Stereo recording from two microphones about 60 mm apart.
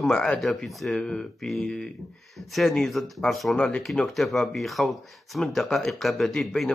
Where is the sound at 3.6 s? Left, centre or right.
Left.